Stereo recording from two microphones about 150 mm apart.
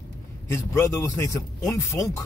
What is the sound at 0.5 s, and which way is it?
Speech, 15° left (ahead or behind).